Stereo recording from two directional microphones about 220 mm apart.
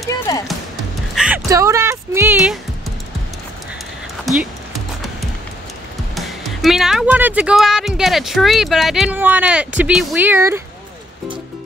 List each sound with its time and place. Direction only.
0.3 s speech: 15° left (ahead or behind)
1.1 s music: 5° right (ahead or behind)
1.5 s speech: 15° right (ahead or behind)
4.3 s speech: centre (ahead or behind)
6.1 s speech: centre (ahead or behind)